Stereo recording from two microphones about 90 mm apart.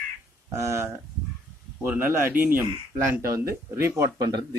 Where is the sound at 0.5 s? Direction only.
30° right (ahead or behind).